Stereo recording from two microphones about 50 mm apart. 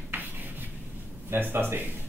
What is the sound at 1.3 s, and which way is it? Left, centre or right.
Speech, right.